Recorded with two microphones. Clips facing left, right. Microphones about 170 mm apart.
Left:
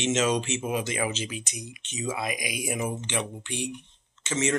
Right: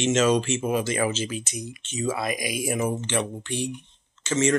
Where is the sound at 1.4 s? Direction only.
40° right (ahead or behind).